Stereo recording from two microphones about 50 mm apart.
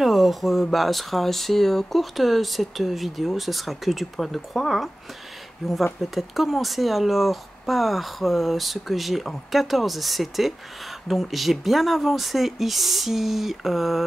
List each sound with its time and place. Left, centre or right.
0.0 s speech: centre
5.9 s speech: centre